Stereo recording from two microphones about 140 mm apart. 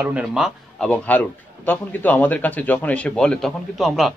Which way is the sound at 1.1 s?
10° left (ahead or behind).